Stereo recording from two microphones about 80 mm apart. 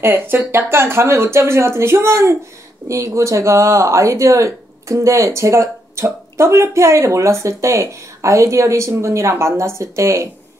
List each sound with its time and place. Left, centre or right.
0.0 s speech: right
2.9 s speech: right